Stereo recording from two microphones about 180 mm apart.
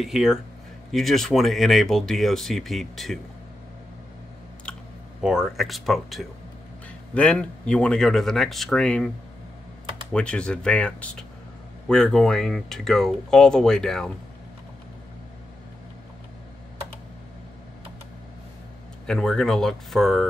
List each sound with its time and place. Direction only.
0.0 s speech: centre (ahead or behind)
4.7 s clicking: 5° left (ahead or behind)
5.2 s speech: 5° right (ahead or behind)
10.1 s speech: 5° left (ahead or behind)
19.0 s speech: 5° left (ahead or behind)